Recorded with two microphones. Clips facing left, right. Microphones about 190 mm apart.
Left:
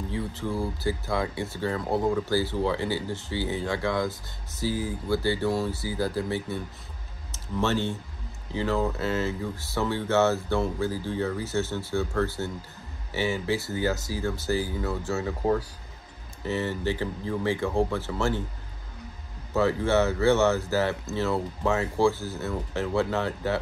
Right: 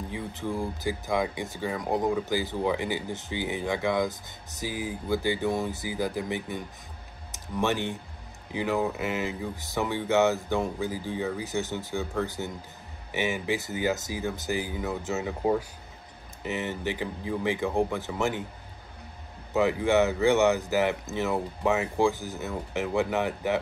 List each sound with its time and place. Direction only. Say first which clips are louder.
0.1 s speech: left 2 dB; 15° right (ahead or behind)
19.5 s speech: even; 15° right (ahead or behind)